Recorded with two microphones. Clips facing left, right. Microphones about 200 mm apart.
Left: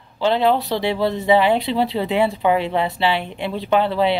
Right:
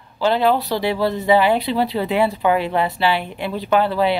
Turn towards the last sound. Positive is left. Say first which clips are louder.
# even
turn(degrees=25)  # may be behind; listen again after turning